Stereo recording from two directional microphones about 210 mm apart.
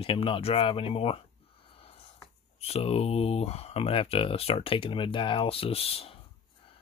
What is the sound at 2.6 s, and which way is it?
Speech, 30° left (ahead or behind).